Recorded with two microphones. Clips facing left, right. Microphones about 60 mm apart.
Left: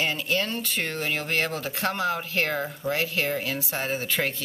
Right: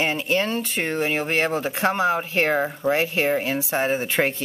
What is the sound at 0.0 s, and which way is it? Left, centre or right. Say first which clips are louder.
Speech: right 4 dB; right.